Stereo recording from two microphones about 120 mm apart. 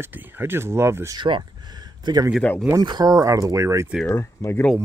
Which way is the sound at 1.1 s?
40° right (ahead or behind).